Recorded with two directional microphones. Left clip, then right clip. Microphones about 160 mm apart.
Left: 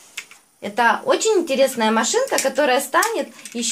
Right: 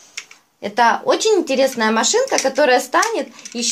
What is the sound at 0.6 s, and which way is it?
Speech, 45° right (ahead or behind).